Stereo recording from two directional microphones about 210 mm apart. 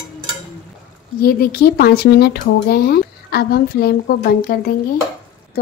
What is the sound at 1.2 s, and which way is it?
Speech, 45° left (ahead or behind).